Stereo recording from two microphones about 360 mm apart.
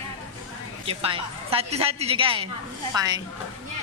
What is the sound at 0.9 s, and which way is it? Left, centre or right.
A woman's voice, centre.